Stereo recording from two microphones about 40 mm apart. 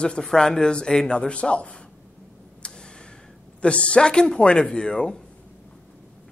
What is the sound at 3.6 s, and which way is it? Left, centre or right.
A man's voice, left.